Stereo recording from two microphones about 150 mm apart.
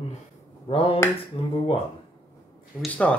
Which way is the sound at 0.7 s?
40° left (ahead or behind).